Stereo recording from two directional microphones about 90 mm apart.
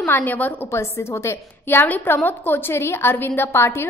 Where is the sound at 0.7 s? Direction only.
30° left (ahead or behind).